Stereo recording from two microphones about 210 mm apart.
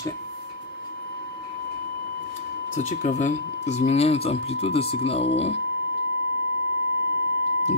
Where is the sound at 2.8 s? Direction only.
35° left (ahead or behind).